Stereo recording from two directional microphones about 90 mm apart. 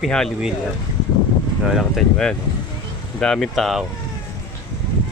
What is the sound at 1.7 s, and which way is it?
Speech, 5° left (ahead or behind).